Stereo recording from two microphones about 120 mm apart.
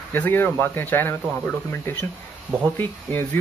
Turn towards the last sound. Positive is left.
turn(degrees=15)  # may be behind; listen again after turning